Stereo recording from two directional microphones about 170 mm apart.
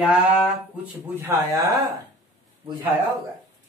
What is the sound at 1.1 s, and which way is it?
Speech, 15° right (ahead or behind).